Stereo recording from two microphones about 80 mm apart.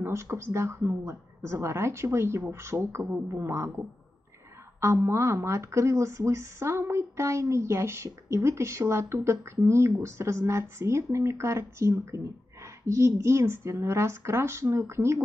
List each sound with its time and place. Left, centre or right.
0.0 s speech: right
4.7 s speech: right